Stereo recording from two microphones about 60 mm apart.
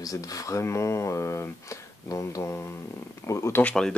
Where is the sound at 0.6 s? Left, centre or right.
Left.